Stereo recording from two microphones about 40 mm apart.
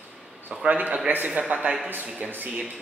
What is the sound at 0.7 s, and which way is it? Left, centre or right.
Speech, right.